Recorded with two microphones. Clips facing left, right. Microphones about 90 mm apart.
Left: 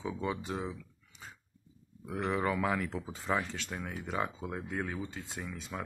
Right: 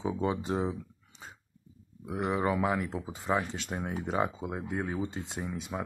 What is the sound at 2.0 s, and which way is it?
Speech, 15° right (ahead or behind).